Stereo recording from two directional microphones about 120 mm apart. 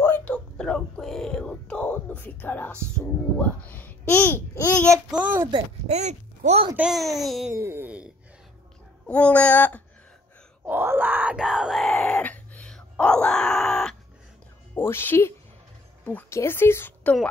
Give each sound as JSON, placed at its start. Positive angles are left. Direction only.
{"t": 0.0, "sound": "a sound", "side_deg": 15}
{"t": 3.0, "sound": "a child's voice", "side_deg": 15}
{"t": 5.1, "sound": "a woman's voice", "side_deg": -15}
{"t": 5.9, "sound": "speech", "side_deg": -70}
{"t": 6.8, "sound": "a child's voice", "side_deg": 0}
{"t": 7.6, "sound": "speech", "side_deg": -20}
{"t": 9.0, "sound": "a child's voice", "side_deg": 10}
{"t": 10.6, "sound": "a sound", "side_deg": -15}
{"t": 14.8, "sound": "a woman's voice", "side_deg": 20}